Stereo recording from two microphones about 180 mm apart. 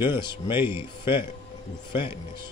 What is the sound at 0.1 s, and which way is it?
Speech, 25° left (ahead or behind).